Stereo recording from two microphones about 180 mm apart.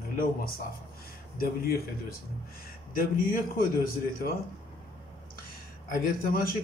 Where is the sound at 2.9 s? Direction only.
50° left (ahead or behind).